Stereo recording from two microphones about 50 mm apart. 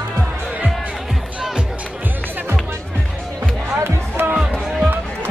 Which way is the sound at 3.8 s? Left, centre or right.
Right.